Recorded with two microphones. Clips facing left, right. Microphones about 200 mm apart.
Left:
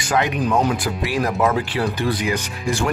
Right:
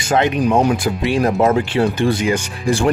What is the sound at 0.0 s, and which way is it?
Speech, 25° right (ahead or behind).